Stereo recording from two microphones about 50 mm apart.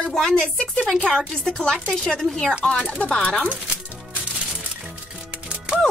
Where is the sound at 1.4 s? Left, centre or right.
Centre.